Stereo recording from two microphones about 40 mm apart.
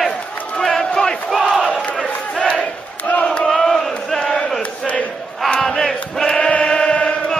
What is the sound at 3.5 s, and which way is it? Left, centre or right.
Chant, centre.